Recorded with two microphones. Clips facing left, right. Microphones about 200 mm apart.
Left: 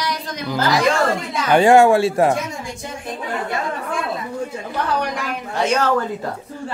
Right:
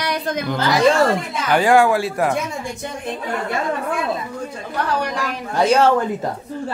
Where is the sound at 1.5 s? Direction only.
25° left (ahead or behind).